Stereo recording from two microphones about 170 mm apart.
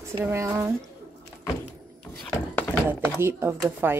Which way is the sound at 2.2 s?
5° left (ahead or behind).